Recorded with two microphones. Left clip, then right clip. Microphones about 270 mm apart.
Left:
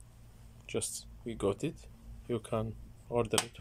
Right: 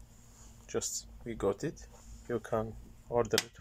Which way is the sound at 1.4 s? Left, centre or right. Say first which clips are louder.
Right 1 dB; centre.